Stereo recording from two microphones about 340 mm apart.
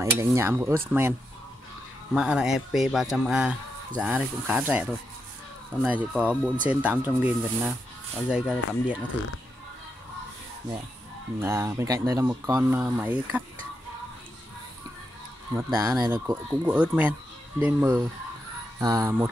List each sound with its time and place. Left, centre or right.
0.0 s speech: centre
2.1 s speech: centre
11.4 s speech: centre
15.5 s speech: centre